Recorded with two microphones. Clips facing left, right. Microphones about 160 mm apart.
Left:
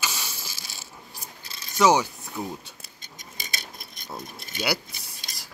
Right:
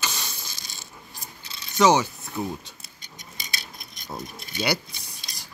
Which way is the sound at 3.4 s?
50° left (ahead or behind).